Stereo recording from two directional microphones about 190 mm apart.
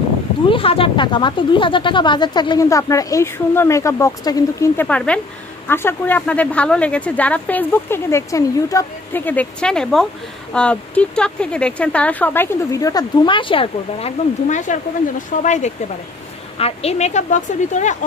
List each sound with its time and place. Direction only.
0.5 s a woman's voice: 30° left (ahead or behind)